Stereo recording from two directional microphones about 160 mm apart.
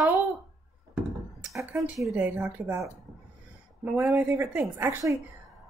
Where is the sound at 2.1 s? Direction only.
10° right (ahead or behind).